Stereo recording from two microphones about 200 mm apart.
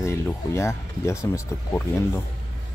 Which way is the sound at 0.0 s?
15° left (ahead or behind).